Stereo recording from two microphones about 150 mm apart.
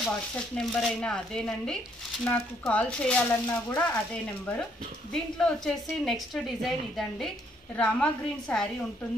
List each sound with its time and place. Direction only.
0.6 s a woman's voice: 5° left (ahead or behind)
5.1 s a woman's voice: 5° left (ahead or behind)